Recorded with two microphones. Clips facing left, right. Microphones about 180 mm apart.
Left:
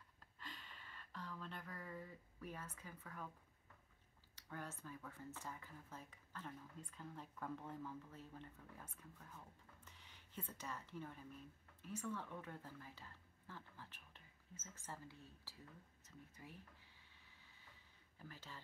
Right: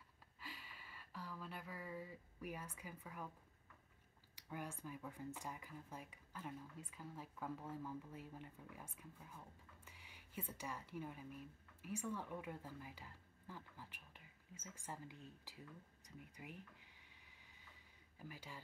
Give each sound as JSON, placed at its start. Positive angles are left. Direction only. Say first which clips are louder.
{"t": 0.4, "sound": "a sound", "louder": "right 1 dB", "side_deg": -10}
{"t": 4.4, "sound": "speech", "louder": "right 2 dB", "side_deg": -10}
{"t": 18.2, "sound": "speech", "louder": "right 3 dB", "side_deg": -10}